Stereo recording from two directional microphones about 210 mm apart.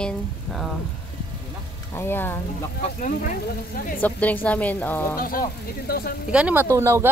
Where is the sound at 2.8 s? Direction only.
35° left (ahead or behind).